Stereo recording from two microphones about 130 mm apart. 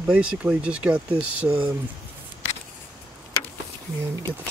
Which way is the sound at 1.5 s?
20° right (ahead or behind).